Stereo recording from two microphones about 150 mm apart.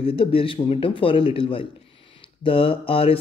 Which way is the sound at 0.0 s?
40° left (ahead or behind).